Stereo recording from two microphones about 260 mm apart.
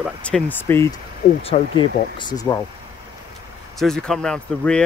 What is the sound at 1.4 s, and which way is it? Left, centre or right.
Speech, left.